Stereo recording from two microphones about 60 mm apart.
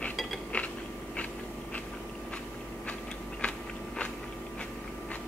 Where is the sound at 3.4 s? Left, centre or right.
Centre.